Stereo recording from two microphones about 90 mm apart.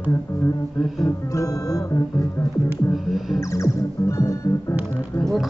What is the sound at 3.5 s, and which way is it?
Music, 35° left (ahead or behind).